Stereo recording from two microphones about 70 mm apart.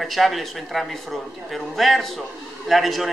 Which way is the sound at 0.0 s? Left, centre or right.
Centre.